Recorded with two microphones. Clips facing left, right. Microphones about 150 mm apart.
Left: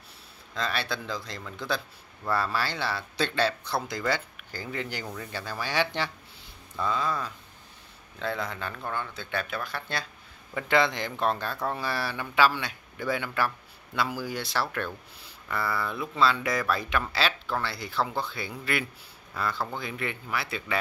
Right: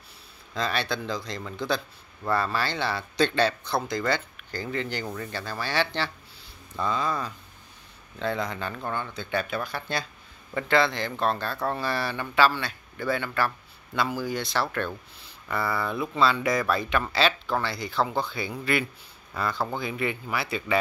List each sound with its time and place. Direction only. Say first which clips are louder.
0.6 s speech: right 3 dB; centre (ahead or behind)
6.8 s speech: right 1 dB; 5° left (ahead or behind)
10.5 s speech: right 1 dB; 15° left (ahead or behind); by 20.7 s centre (ahead or behind)